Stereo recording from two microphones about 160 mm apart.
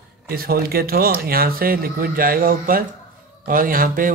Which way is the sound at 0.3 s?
70° right (ahead or behind).